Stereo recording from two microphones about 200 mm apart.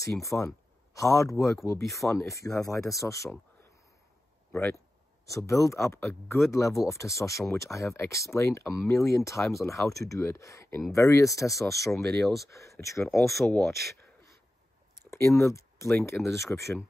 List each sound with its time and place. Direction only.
0.0 s speech: 15° left (ahead or behind)
4.5 s speech: 10° left (ahead or behind)
13.3 s speech: centre (ahead or behind)
15.0 s speech: 15° left (ahead or behind)